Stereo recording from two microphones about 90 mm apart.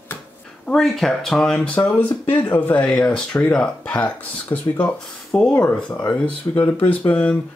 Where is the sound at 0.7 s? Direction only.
5° left (ahead or behind).